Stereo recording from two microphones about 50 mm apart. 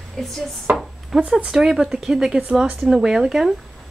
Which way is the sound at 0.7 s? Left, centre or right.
Right.